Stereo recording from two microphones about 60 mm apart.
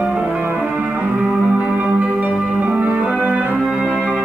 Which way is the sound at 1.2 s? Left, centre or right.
Centre.